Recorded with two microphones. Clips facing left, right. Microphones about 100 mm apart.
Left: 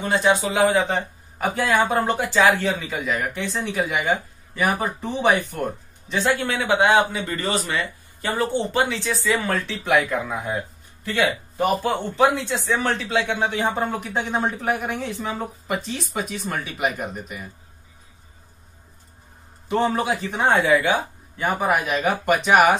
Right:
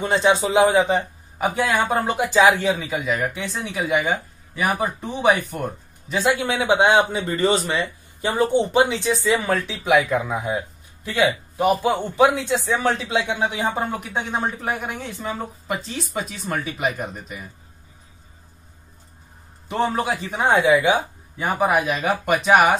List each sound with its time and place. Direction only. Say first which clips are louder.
0.0 s speech: right 1 dB; 20° right (ahead or behind)
0.8 s speech: right 3 dB; centre (ahead or behind)
2.1 s speech: right 5 dB; 15° right (ahead or behind)
3.0 s speech: right 1 dB; centre (ahead or behind)
6.0 s speech: right 1 dB; 15° right (ahead or behind)
19.8 s speech: right 1 dB; centre (ahead or behind)
20.4 s speech: right 2 dB; 15° right (ahead or behind)
21.4 s speech: right 2 dB; 5° right (ahead or behind)